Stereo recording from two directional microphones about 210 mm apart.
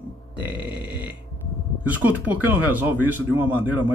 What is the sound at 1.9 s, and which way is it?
Speech, 5° right (ahead or behind).